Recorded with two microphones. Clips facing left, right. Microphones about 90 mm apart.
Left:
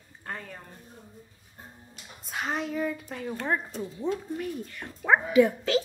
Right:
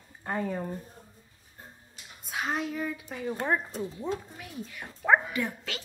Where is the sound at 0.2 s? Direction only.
10° right (ahead or behind).